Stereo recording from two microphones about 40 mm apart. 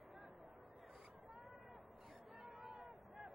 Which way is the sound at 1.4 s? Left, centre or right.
Centre.